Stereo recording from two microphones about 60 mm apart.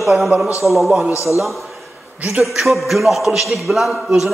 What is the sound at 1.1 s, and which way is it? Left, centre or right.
Speech, left.